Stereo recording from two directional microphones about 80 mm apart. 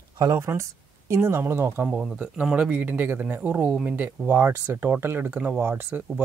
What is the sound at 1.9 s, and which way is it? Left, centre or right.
Speech, centre.